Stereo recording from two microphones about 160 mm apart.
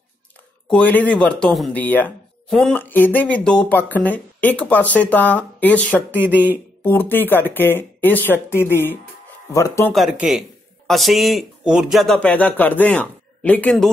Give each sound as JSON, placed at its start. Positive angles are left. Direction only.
{"t": 0.7, "sound": "speech", "side_deg": 10}
{"t": 6.2, "sound": "speech", "side_deg": -10}
{"t": 6.8, "sound": "speech", "side_deg": 10}
{"t": 9.9, "sound": "speech", "side_deg": -5}